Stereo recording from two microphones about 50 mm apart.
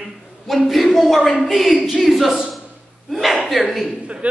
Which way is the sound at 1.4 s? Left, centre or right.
Centre.